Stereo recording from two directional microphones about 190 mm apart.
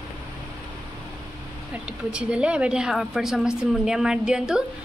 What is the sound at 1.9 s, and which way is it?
A woman's voice, 5° right (ahead or behind).